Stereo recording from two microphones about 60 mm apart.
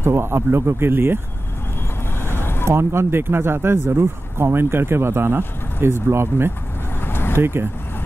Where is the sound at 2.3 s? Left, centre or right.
Left.